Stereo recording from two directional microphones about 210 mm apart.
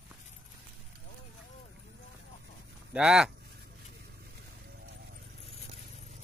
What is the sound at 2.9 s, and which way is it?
Speech, 5° right (ahead or behind).